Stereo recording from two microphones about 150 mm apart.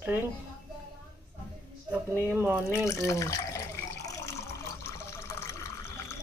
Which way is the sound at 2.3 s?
10° right (ahead or behind).